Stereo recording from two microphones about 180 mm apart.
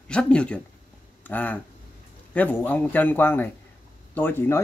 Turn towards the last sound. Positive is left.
turn(degrees=10)  # may be behind; listen again after turning